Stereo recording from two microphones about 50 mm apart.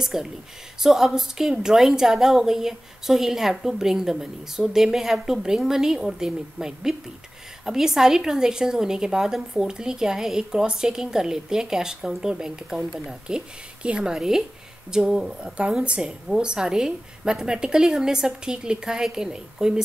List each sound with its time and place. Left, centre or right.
0.0 s a woman's voice: centre